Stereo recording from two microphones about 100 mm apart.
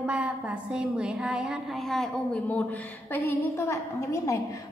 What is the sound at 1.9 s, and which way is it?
Speech, 5° left (ahead or behind).